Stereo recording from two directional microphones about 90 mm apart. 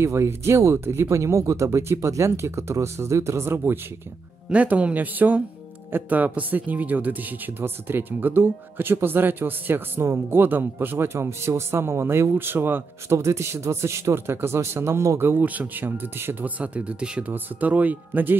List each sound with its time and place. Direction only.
0.0 s speech: 30° right (ahead or behind)
4.5 s speech: 15° right (ahead or behind)